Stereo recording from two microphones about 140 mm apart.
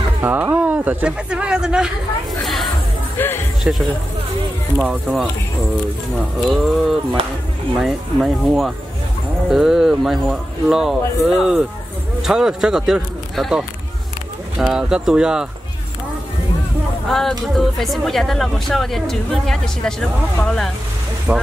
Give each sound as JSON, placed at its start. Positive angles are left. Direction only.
{"t": 0.2, "sound": "speech", "side_deg": -15}
{"t": 2.4, "sound": "chatter", "side_deg": 0}
{"t": 3.2, "sound": "music", "side_deg": 15}
{"t": 3.7, "sound": "speech", "side_deg": -5}
{"t": 17.1, "sound": "speech", "side_deg": 0}
{"t": 21.3, "sound": "speech", "side_deg": -10}